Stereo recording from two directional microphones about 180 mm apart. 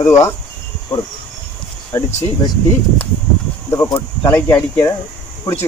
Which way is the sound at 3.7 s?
20° left (ahead or behind).